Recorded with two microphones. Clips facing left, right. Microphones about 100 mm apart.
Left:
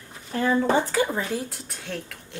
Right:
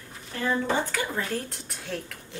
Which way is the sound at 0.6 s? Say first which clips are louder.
Left 6 dB; 25° left (ahead or behind).